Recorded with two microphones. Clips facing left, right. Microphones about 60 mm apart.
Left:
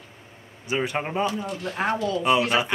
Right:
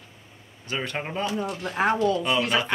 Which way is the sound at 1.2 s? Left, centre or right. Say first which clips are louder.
Left 1 dB; centre.